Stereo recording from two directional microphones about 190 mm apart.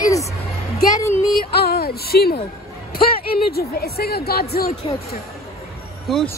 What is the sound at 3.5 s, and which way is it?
Speech, 55° left (ahead or behind).